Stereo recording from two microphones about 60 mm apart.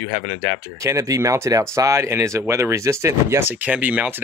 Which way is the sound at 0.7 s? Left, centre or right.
Right.